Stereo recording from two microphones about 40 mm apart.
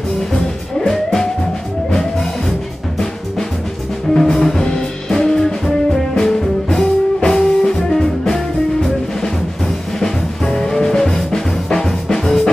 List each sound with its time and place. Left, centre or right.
0.3 s music: centre
4.1 s music: centre
9.9 s music: centre